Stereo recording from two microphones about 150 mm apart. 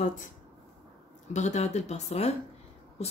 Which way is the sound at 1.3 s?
50° left (ahead or behind).